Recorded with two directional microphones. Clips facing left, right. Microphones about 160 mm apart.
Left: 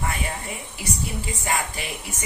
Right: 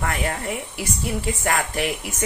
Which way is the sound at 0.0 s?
90° right.